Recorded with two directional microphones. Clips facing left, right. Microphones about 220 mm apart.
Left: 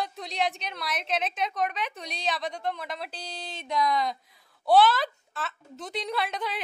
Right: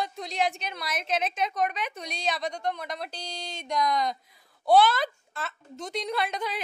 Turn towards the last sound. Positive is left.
turn(degrees=0)  # may be behind; listen again after turning